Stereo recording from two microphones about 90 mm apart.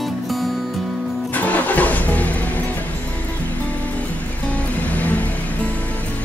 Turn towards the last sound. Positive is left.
turn(degrees=15)  # may be behind; listen again after turning